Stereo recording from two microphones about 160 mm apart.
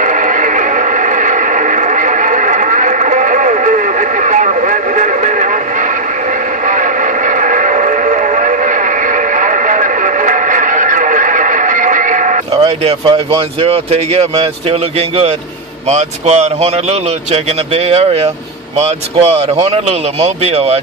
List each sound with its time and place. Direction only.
0.0 s radio: 55° right (ahead or behind)
6.7 s radio: 55° right (ahead or behind)
12.5 s speech: 40° right (ahead or behind)
17.8 s speech: 40° right (ahead or behind)